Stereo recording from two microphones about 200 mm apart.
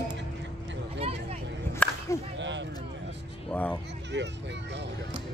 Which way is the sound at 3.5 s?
5° left (ahead or behind).